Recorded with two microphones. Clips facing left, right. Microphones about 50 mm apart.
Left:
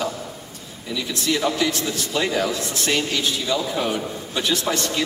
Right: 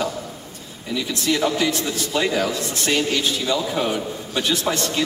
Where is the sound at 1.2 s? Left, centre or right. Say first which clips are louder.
Right 1 dB; centre.